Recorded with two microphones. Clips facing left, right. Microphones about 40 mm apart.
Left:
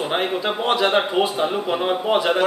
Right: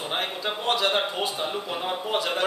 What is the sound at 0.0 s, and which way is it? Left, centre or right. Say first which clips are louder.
A man's voice: left 7 dB; left.